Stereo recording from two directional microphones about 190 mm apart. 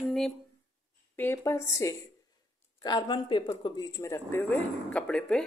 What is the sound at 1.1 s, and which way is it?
Speech, 10° left (ahead or behind).